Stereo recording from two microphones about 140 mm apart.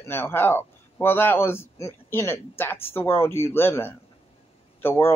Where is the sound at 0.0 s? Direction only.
15° left (ahead or behind).